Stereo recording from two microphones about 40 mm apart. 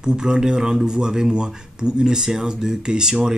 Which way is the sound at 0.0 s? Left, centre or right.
Centre.